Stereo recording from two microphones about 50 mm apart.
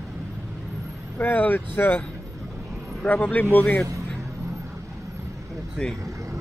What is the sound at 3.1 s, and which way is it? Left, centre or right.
Speech, left.